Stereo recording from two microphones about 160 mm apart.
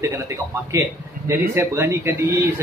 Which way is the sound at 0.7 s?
20° right (ahead or behind).